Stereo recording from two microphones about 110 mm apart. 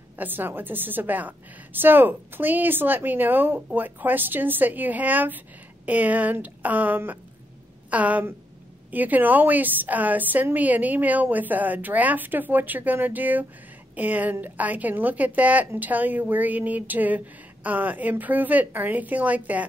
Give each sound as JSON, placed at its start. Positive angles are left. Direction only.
{"t": 0.1, "sound": "a woman's voice", "side_deg": -20}